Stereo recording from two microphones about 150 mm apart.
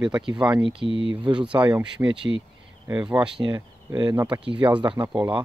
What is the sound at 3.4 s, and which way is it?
Speech, 30° right (ahead or behind).